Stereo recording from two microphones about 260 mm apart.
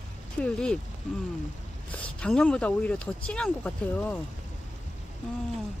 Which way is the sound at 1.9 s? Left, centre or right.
Centre.